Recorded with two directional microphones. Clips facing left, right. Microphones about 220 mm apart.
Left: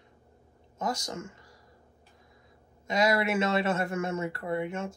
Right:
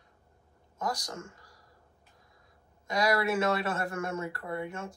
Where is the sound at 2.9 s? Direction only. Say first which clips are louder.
Left 2 dB; 25° left (ahead or behind).